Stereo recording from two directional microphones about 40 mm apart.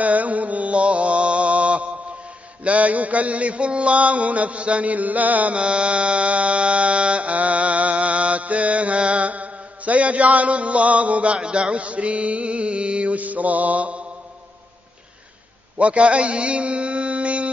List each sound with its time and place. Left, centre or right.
0.0 s mantra: right
15.8 s a man's voice: right